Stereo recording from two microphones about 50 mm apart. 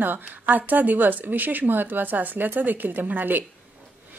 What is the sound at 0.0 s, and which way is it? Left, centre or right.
Speech, right.